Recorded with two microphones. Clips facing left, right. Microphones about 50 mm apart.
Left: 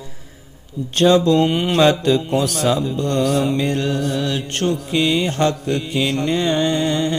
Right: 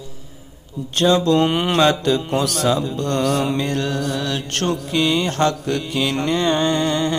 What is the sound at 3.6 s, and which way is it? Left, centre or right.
Mantra, left.